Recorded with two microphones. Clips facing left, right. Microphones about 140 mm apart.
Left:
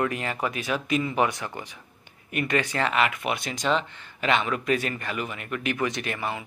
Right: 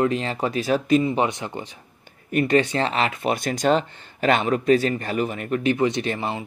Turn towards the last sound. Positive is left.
turn(degrees=-30)  # may be behind; listen again after turning